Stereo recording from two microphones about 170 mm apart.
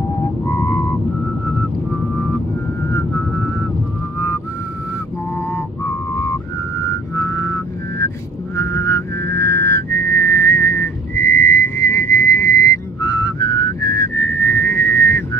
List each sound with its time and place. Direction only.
0.5 s a sound: 15° left (ahead or behind)
2.9 s vehicle: 15° left (ahead or behind)
7.2 s vehicle: 15° left (ahead or behind)
8.5 s whistling: 15° left (ahead or behind)